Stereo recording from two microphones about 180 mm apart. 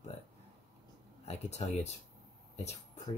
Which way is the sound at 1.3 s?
35° left (ahead or behind).